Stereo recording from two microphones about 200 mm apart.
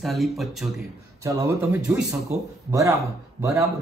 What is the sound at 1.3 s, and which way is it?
Speech, 15° right (ahead or behind).